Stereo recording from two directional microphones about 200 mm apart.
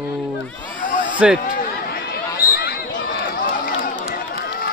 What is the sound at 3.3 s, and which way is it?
Run, 45° left (ahead or behind).